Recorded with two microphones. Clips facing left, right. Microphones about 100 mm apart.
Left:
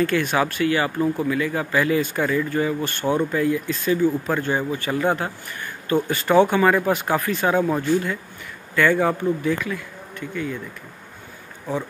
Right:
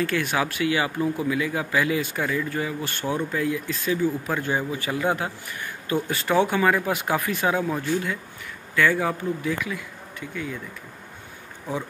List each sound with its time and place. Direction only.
0.0 s speech: centre (ahead or behind)